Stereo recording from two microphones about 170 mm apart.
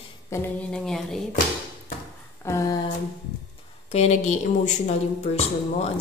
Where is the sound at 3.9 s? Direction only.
40° left (ahead or behind).